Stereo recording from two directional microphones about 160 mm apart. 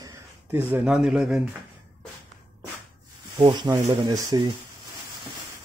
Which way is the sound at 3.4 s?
30° right (ahead or behind).